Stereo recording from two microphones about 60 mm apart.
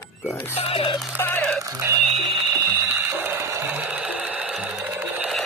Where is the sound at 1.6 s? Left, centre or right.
Right.